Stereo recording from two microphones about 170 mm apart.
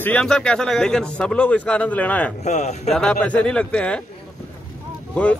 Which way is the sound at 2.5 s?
40° left (ahead or behind).